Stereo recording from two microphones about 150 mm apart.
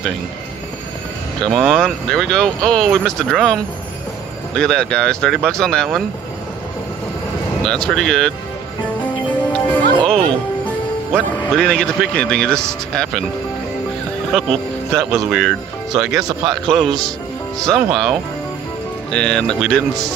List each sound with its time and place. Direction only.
1.4 s speech: centre (ahead or behind)
4.6 s speech: 5° left (ahead or behind)
7.6 s speech: 5° left (ahead or behind)
9.2 s music: 10° left (ahead or behind)
11.1 s speech: 5° left (ahead or behind)
14.3 s speech: centre (ahead or behind)
16.3 s a man's voice: 30° right (ahead or behind)
16.7 s speech: centre (ahead or behind)
19.1 s speech: 5° left (ahead or behind)